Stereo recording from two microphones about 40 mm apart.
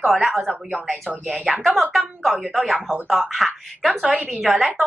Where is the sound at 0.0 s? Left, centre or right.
Centre.